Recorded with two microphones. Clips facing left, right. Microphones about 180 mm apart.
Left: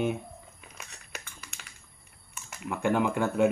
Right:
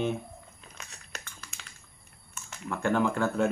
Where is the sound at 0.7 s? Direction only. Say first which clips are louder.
Left 1 dB; 10° left (ahead or behind).